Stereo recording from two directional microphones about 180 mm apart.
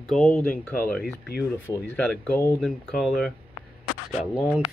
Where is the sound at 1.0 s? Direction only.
65° left (ahead or behind).